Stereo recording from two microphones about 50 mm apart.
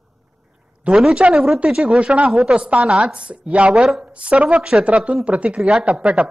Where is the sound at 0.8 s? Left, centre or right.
Centre.